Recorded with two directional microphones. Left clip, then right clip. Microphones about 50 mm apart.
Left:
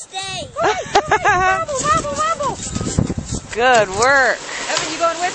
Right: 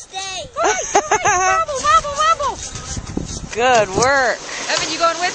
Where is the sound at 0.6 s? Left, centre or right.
Right.